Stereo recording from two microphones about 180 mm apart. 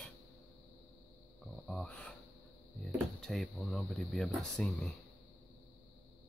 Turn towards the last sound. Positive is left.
turn(degrees=5)  # may be behind; listen again after turning